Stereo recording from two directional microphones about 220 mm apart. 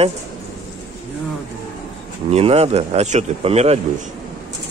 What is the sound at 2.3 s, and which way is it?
Speech, 25° right (ahead or behind).